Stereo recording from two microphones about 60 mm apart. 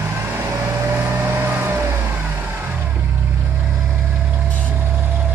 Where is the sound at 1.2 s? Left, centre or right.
Right.